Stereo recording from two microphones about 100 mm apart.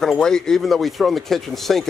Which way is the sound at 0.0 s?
5° left (ahead or behind).